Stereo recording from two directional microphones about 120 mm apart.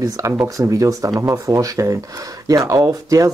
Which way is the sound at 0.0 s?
25° right (ahead or behind).